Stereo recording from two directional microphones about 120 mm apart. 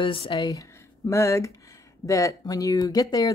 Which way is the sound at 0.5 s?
25° left (ahead or behind).